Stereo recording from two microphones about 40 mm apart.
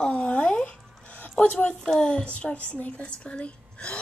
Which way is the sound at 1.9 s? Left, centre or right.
Left.